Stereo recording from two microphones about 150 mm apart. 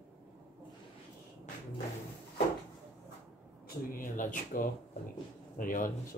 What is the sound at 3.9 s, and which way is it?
Speech, 60° left (ahead or behind).